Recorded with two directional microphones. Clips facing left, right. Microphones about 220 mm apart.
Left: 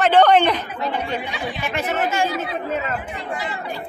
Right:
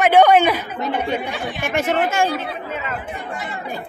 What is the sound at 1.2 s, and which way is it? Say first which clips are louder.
Speech: right 2 dB; 50° right (ahead or behind).